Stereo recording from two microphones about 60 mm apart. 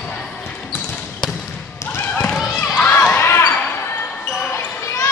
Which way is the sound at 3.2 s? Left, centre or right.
Left.